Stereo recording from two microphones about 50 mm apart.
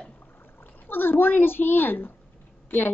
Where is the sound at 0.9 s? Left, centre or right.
Left.